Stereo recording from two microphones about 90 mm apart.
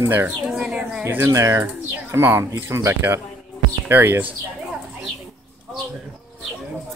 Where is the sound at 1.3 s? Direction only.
35° right (ahead or behind).